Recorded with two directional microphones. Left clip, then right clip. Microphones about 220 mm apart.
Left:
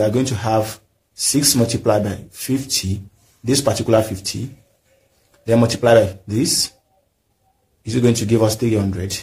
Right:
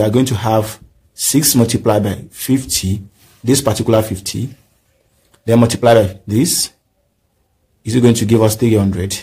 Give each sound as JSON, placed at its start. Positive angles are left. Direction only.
{"t": 0.0, "sound": "speech", "side_deg": -35}
{"t": 5.5, "sound": "speech", "side_deg": -35}
{"t": 7.8, "sound": "speech", "side_deg": -35}